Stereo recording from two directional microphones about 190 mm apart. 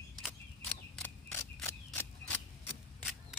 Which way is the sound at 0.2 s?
5° left (ahead or behind).